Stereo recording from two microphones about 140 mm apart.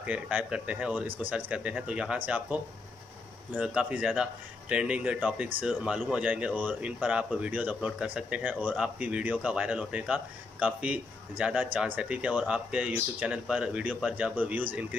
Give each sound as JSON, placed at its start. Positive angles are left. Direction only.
{"t": 0.0, "sound": "a man's voice", "side_deg": -10}